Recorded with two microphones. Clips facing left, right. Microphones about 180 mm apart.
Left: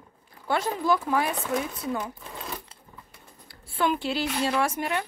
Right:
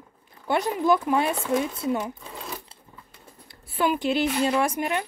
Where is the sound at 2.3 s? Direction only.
Centre (ahead or behind).